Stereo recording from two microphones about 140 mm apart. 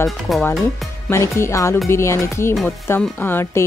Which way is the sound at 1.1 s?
20° left (ahead or behind).